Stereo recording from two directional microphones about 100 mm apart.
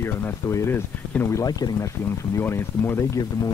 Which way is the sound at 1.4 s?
35° left (ahead or behind).